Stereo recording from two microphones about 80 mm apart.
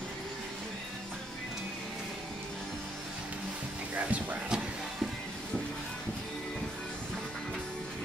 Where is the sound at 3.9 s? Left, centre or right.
Centre.